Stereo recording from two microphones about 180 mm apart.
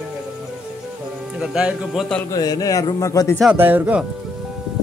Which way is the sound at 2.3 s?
20° left (ahead or behind).